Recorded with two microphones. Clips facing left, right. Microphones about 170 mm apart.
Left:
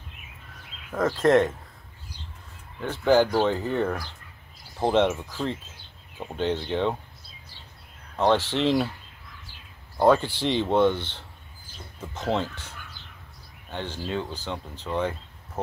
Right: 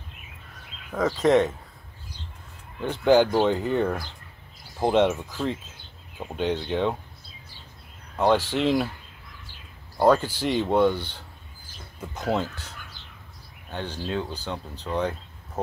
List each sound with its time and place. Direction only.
0.9 s speech: centre (ahead or behind)
2.8 s speech: 15° right (ahead or behind)
6.1 s speech: 10° right (ahead or behind)
8.2 s speech: 10° right (ahead or behind)
9.9 s speech: centre (ahead or behind)
13.7 s speech: 10° right (ahead or behind)
15.0 s a sound: centre (ahead or behind)